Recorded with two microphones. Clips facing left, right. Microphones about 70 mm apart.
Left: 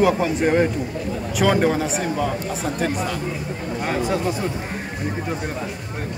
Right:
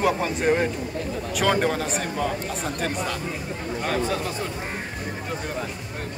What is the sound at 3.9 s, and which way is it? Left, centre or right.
Speech, centre.